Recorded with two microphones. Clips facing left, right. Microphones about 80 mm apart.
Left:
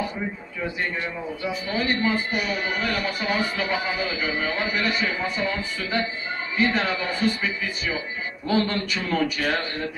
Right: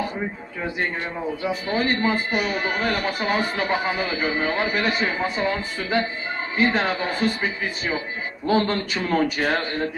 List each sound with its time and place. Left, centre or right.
1.7 s a man's voice: right